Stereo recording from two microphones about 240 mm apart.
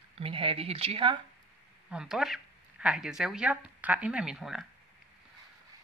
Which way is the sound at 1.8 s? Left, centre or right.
Centre.